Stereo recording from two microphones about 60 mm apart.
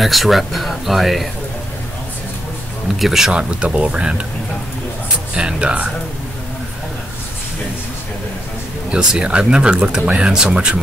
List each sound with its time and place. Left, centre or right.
0.0 s speech: centre
3.0 s speech: centre
3.3 s speech: right
5.3 s speech: centre
8.9 s speech: centre